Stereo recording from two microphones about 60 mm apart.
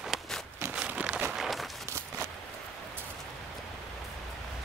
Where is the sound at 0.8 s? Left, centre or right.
Centre.